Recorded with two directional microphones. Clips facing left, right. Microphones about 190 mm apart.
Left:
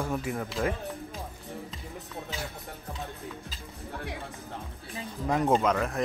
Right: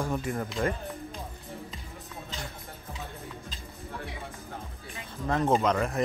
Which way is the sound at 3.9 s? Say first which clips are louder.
Left 2 dB; 55° left (ahead or behind).